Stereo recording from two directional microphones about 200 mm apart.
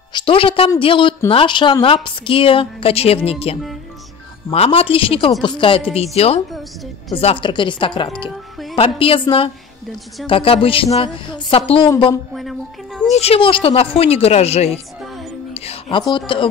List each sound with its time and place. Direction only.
0.1 s a woman's voice: 25° left (ahead or behind)
12.4 s a sound: centre (ahead or behind)
13.1 s a woman's voice: 30° left (ahead or behind)